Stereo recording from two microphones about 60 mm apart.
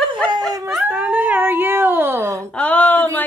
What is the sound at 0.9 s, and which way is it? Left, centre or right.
Dog, right.